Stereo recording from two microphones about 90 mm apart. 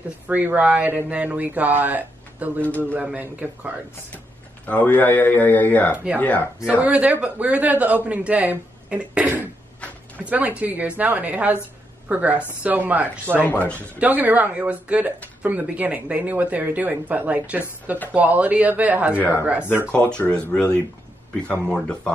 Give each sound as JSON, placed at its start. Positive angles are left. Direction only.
{"t": 0.3, "sound": "a man's voice", "side_deg": -15}
{"t": 4.6, "sound": "speech", "side_deg": 20}
{"t": 6.6, "sound": "a man's voice", "side_deg": -15}
{"t": 13.5, "sound": "speech", "side_deg": 20}
{"t": 13.7, "sound": "a man's voice", "side_deg": -20}
{"t": 19.9, "sound": "speech", "side_deg": 10}